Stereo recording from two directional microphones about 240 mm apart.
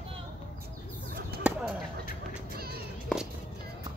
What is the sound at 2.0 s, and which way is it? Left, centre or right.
Quack, right.